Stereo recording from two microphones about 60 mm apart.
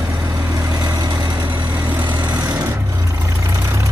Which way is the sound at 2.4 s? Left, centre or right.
Right.